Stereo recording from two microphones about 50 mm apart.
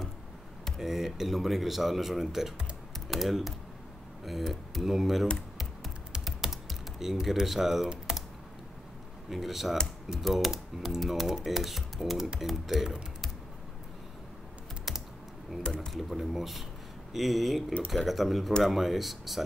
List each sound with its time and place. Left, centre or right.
0.7 s speech: centre
6.2 s typing: centre
9.3 s speech: centre
14.9 s typing: centre
15.6 s speech: centre
15.9 s speech: centre